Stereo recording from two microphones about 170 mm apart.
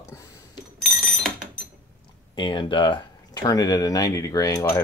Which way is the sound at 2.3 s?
25° left (ahead or behind).